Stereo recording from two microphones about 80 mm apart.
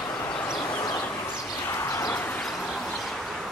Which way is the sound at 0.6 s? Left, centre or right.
Left.